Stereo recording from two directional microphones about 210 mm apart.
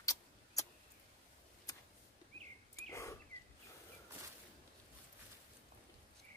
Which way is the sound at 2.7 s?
15° left (ahead or behind).